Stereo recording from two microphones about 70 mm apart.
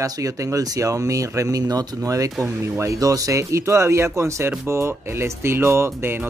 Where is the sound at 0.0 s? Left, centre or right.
Right.